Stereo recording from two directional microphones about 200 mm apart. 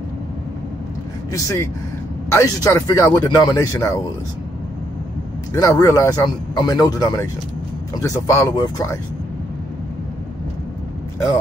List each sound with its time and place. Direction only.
1.3 s speech: 15° left (ahead or behind)
5.5 s speech: 15° left (ahead or behind)